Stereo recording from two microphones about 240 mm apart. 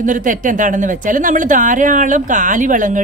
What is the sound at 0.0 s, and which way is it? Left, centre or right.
Speech, right.